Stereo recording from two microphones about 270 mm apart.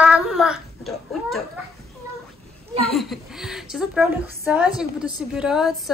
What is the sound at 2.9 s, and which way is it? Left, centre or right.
A woman's voice, centre.